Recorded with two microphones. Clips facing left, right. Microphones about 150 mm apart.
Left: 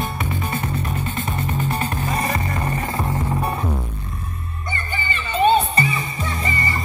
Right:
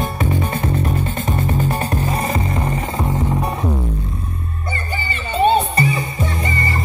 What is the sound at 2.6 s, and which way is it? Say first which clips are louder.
Vehicle: right 2 dB; 15° right (ahead or behind).